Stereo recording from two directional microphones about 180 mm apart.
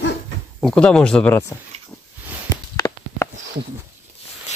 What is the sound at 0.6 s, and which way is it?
Speech, 5° left (ahead or behind).